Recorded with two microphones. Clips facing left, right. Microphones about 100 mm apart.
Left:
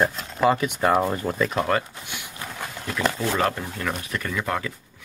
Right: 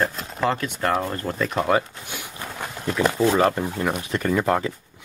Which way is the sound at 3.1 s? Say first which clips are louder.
Right 5 dB; 20° right (ahead or behind).